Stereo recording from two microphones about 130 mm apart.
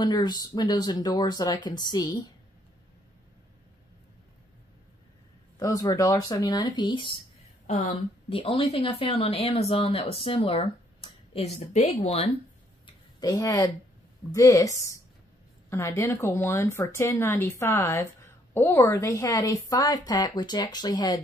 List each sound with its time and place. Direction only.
0.0 s speech: 35° left (ahead or behind)
5.6 s a woman's voice: 25° left (ahead or behind)
7.6 s speech: 65° left (ahead or behind); by 11.5 s 50° left (ahead or behind)
11.7 s speech: 60° left (ahead or behind)
12.8 s a sound: 30° left (ahead or behind)
14.3 s a woman's voice: 25° left (ahead or behind)